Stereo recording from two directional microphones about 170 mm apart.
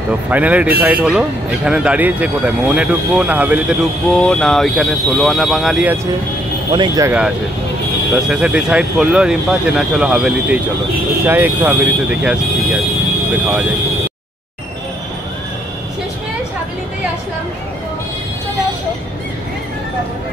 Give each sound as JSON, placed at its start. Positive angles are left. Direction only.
{"t": 0.3, "sound": "speech", "side_deg": -10}
{"t": 4.1, "sound": "speech", "side_deg": 5}
{"t": 6.7, "sound": "speech", "side_deg": -25}
{"t": 7.1, "sound": "speech", "side_deg": -5}